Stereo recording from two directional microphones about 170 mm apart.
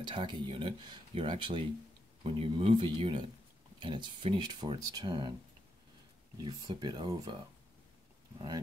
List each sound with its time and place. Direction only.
0.0 s speech: 30° right (ahead or behind)
6.4 s speech: 25° right (ahead or behind)